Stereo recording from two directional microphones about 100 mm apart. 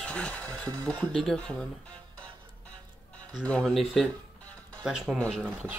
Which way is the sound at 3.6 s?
Centre (ahead or behind).